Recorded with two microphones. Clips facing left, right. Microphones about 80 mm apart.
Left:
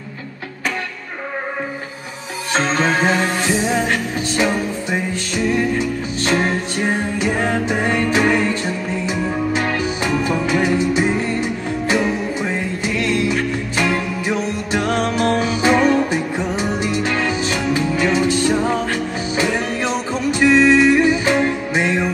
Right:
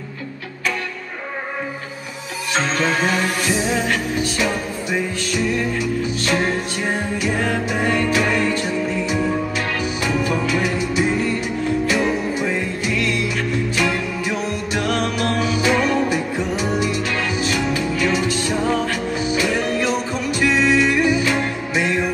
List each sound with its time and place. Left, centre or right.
2.5 s music: left